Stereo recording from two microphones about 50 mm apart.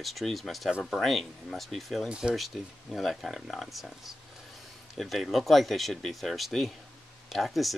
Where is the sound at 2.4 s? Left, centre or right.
Centre.